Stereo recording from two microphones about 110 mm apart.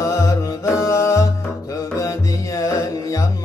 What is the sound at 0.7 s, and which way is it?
Music, 30° left (ahead or behind).